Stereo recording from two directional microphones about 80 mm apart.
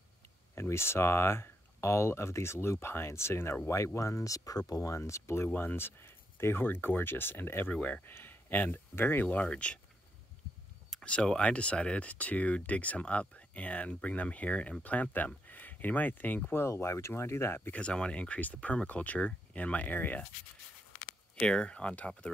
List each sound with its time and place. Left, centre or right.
0.6 s speech: left
5.5 s speech: left
11.1 s speech: centre
16.6 s speech: left
17.7 s speech: centre
21.4 s speech: centre